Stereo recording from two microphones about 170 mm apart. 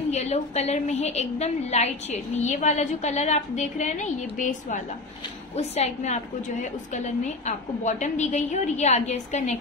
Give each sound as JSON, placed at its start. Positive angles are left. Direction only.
{"t": 0.1, "sound": "a woman's voice", "side_deg": 40}